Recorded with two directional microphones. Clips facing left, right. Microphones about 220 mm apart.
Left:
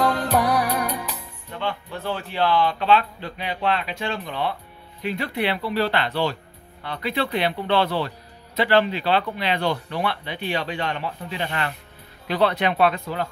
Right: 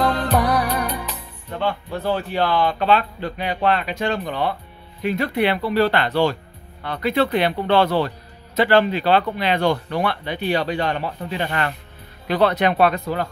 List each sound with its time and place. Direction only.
0.0 s music: 5° left (ahead or behind)
1.6 s speech: 40° right (ahead or behind)